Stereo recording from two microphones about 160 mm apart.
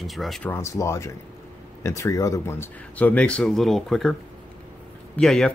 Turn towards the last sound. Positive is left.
turn(degrees=5)  # may be behind; listen again after turning